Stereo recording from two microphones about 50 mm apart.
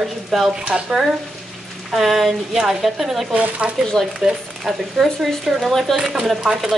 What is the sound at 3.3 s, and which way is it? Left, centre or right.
Speech, right.